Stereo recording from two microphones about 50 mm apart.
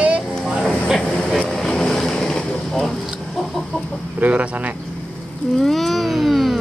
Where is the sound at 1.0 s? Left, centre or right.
Centre.